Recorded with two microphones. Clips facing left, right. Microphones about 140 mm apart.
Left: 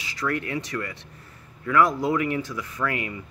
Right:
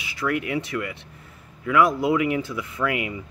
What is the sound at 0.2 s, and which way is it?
Speech, 15° right (ahead or behind).